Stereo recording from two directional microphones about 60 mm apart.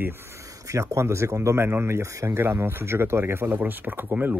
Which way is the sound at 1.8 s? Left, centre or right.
Right.